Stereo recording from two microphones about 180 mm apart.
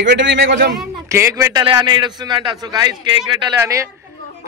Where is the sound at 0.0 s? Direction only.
85° right.